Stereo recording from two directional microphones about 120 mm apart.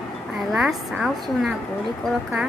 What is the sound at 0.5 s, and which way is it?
A woman's voice, 5° right (ahead or behind).